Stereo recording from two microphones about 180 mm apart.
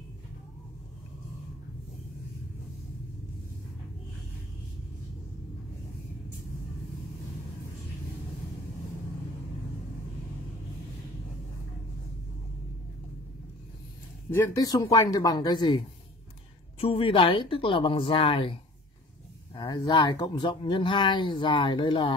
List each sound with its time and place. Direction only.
14.3 s speech: 15° left (ahead or behind)
16.8 s speech: 30° left (ahead or behind)